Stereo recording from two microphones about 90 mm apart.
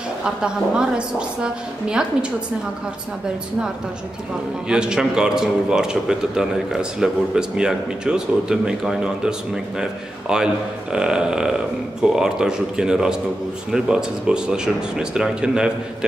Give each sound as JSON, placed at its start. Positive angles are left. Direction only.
{"t": 0.2, "sound": "speech", "side_deg": -10}
{"t": 4.6, "sound": "speech", "side_deg": -10}